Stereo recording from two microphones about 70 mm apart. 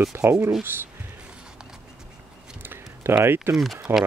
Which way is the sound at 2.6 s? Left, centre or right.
Right.